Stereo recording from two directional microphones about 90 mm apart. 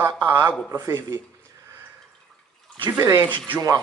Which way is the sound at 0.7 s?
40° right (ahead or behind).